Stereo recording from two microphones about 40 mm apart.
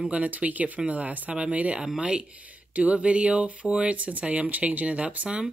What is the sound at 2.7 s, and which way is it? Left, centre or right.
Speech, right.